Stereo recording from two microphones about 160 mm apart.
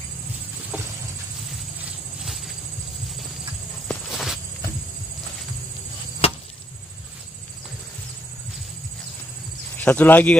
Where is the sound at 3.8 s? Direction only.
Centre (ahead or behind).